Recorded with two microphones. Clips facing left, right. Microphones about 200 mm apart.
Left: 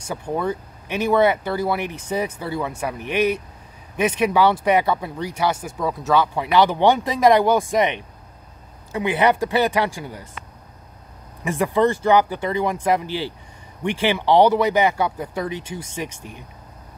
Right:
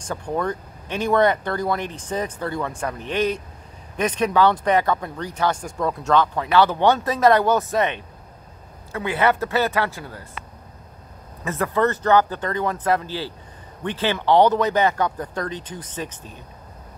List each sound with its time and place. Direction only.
0.0 s speech: 10° left (ahead or behind)
11.4 s speech: 15° left (ahead or behind)